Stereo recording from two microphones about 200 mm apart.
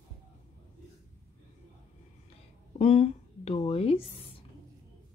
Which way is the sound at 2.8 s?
30° left (ahead or behind).